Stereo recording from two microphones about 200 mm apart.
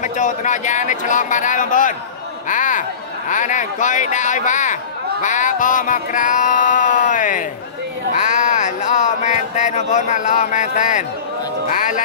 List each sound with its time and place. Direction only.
0.0 s speech: 40° left (ahead or behind)